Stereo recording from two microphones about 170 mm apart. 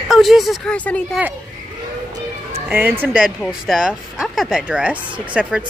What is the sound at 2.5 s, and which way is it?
Speech, 10° right (ahead or behind).